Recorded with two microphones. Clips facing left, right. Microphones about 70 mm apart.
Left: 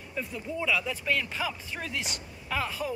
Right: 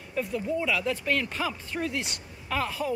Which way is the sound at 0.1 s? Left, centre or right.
Right.